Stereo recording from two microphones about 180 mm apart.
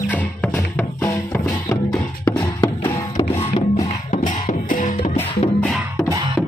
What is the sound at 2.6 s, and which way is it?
Music, 25° left (ahead or behind).